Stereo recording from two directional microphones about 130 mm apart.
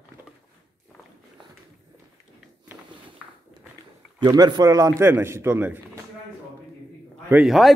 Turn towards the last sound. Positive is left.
turn(degrees=-5)  # may be behind; listen again after turning